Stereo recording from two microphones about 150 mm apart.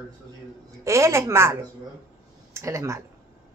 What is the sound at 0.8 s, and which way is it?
Speech, 20° right (ahead or behind).